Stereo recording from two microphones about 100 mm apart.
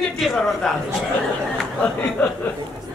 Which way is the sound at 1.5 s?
15° left (ahead or behind).